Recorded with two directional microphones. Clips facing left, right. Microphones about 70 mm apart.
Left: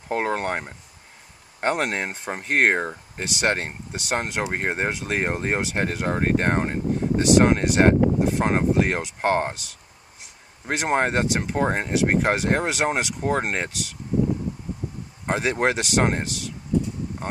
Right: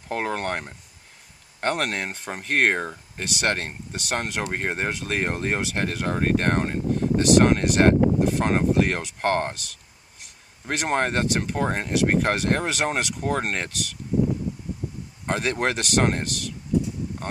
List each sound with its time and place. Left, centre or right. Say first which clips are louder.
0.1 s speech: left 2 dB; centre
10.6 s speech: left 2 dB; centre
15.2 s speech: left 2 dB; centre